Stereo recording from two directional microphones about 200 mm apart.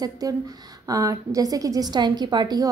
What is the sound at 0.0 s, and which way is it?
A woman's voice, 20° right (ahead or behind).